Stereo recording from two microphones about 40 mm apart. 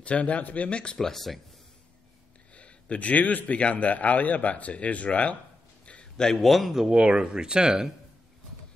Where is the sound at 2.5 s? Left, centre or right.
Left.